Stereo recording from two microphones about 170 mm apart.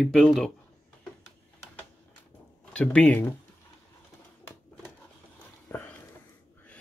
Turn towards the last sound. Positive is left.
turn(degrees=10)  # may be behind; listen again after turning